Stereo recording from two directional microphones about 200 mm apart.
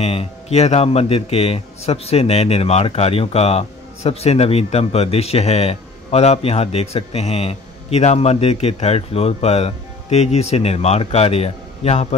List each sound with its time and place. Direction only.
0.0 s speech: 30° left (ahead or behind)